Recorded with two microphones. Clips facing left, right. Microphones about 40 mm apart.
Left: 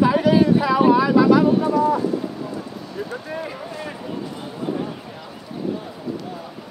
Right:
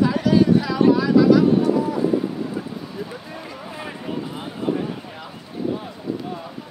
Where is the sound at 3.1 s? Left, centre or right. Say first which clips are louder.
Left 5 dB; centre.